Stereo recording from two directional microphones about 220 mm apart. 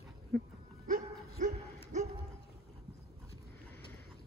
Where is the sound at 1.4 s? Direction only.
35° right (ahead or behind).